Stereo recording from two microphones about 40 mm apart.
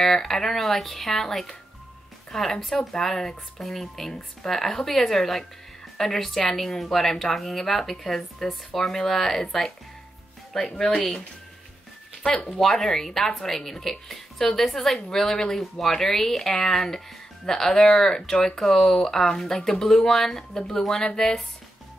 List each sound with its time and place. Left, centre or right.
0.0 s speech: centre
10.7 s speech: centre
12.4 s a woman's voice: centre
20.5 s speech: centre